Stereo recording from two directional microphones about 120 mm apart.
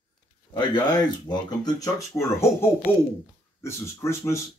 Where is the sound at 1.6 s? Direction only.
30° left (ahead or behind).